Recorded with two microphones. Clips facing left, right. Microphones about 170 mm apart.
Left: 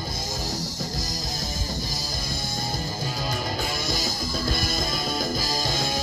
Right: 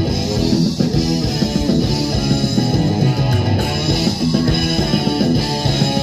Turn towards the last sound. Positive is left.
turn(degrees=-65)  # may be behind; listen again after turning